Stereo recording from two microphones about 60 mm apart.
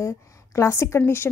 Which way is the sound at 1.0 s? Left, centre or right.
Left.